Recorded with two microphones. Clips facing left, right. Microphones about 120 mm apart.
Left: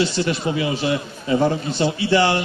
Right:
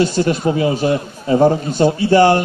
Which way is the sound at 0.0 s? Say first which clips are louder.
Right 5 dB; 45° right (ahead or behind).